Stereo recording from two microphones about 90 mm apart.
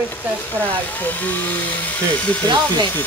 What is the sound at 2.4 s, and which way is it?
Speech, 55° right (ahead or behind).